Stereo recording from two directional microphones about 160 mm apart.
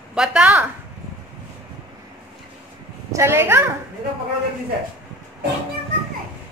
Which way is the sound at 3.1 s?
15° right (ahead or behind).